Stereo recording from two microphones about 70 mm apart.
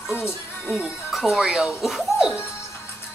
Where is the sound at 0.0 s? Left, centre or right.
Left.